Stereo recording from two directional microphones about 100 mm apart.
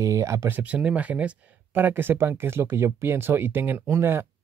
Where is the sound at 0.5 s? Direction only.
15° right (ahead or behind).